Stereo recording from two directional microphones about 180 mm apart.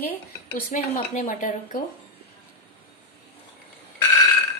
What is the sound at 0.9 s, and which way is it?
Speech, 50° left (ahead or behind).